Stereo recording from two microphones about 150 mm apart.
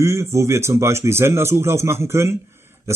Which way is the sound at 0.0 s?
20° right (ahead or behind).